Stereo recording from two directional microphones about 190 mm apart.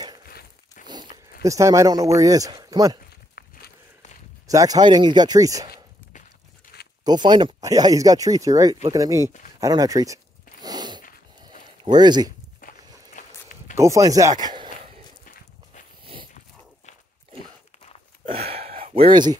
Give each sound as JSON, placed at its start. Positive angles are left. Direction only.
{"t": 0.3, "sound": "a sound", "side_deg": 55}
{"t": 1.4, "sound": "speech", "side_deg": -15}
{"t": 3.4, "sound": "walk", "side_deg": 50}
{"t": 4.5, "sound": "speech", "side_deg": -20}
{"t": 6.7, "sound": "zipper", "side_deg": 60}
{"t": 7.1, "sound": "speech", "side_deg": -25}
{"t": 9.6, "sound": "a sound", "side_deg": -20}
{"t": 12.6, "sound": "walk", "side_deg": 45}
{"t": 13.7, "sound": "speech", "side_deg": -15}
{"t": 18.3, "sound": "gasp", "side_deg": -30}